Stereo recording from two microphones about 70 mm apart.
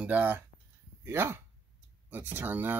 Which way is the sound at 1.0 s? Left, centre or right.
Right.